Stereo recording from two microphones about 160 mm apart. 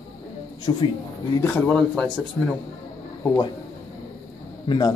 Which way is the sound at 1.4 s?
10° left (ahead or behind).